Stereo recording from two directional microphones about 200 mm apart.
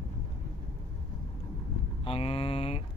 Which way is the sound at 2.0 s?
30° left (ahead or behind).